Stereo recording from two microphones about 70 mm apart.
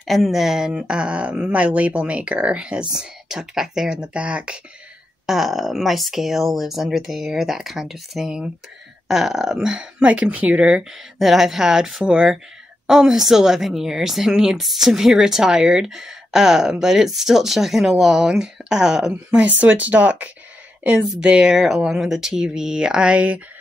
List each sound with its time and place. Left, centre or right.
0.0 s speech: centre
5.2 s speech: centre
11.1 s speech: centre